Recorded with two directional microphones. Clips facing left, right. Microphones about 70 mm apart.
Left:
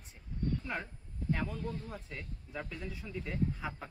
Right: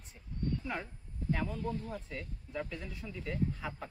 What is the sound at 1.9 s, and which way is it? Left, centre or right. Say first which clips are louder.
Speech: right 3 dB; centre.